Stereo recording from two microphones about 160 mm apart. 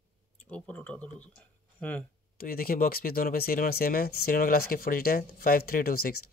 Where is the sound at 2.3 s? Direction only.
65° left (ahead or behind).